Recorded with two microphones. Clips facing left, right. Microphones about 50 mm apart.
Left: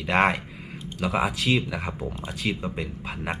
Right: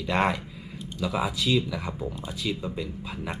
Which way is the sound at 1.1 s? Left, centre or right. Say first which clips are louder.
Left 3 dB; left.